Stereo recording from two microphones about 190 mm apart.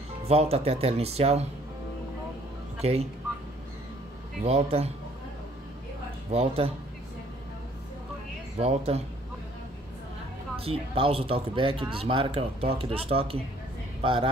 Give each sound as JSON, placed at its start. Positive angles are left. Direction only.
{"t": 0.3, "sound": "speech", "side_deg": -30}
{"t": 2.8, "sound": "speech", "side_deg": -35}
{"t": 4.4, "sound": "speech", "side_deg": -35}
{"t": 6.3, "sound": "speech", "side_deg": -30}
{"t": 8.5, "sound": "speech", "side_deg": -30}
{"t": 10.6, "sound": "speech", "side_deg": -30}